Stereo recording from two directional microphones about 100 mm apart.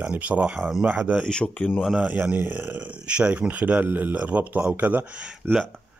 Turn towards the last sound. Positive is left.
turn(degrees=-20)  # may be behind; listen again after turning